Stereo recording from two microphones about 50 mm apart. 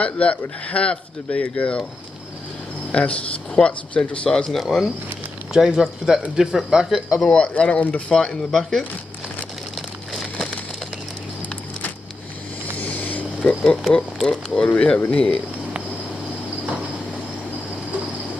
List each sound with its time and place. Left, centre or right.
0.0 s speech: left
2.9 s speech: left
4.5 s speech: centre
5.5 s speech: centre
7.2 s speech: left
8.1 s speech: centre
12.7 s vehicle: left
13.9 s speech: centre